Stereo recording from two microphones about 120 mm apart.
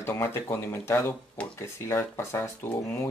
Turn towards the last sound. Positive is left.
turn(degrees=20)  # may be behind; listen again after turning